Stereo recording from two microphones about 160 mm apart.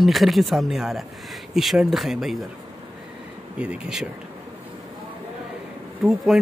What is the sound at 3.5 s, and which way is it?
Speech, 5° right (ahead or behind).